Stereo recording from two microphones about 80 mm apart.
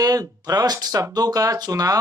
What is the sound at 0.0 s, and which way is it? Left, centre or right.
Speech, right.